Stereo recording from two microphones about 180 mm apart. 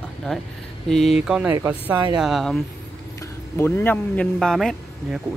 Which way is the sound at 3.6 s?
10° left (ahead or behind).